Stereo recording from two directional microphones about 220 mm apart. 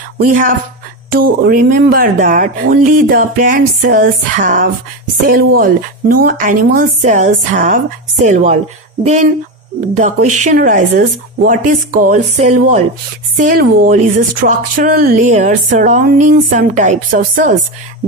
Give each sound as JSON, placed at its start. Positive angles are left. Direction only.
{"t": 0.2, "sound": "speech", "side_deg": -35}